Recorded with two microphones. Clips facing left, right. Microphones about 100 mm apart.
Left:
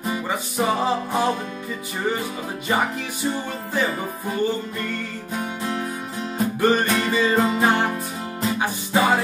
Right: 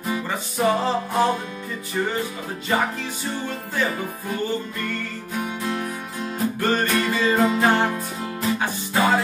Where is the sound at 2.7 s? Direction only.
15° left (ahead or behind).